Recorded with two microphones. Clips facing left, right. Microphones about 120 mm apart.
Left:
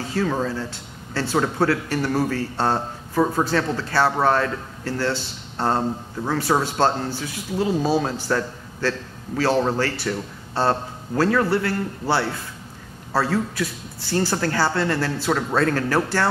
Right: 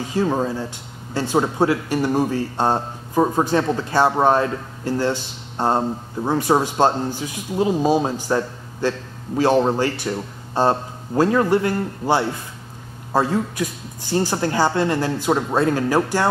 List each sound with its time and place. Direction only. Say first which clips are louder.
0.1 s a man's voice: right 3 dB; 20° right (ahead or behind)